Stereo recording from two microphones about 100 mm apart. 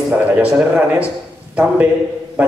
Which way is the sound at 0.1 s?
15° right (ahead or behind).